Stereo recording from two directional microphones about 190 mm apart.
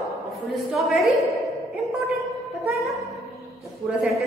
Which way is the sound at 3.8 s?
Centre (ahead or behind).